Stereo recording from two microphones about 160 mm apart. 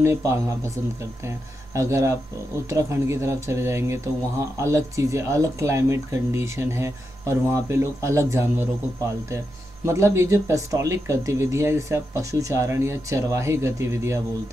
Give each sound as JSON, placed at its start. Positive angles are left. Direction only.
{"t": 0.0, "sound": "speech", "side_deg": -15}
{"t": 9.8, "sound": "speech", "side_deg": -15}